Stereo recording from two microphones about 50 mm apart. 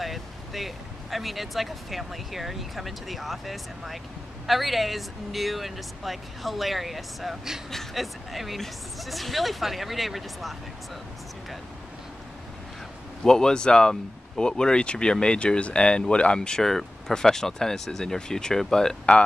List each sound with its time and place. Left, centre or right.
0.0 s speech: centre
13.2 s speech: centre